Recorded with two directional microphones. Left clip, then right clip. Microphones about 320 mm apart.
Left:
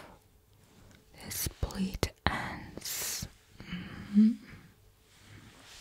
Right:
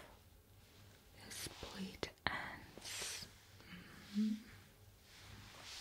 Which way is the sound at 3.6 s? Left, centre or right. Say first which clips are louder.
Left 12 dB; left.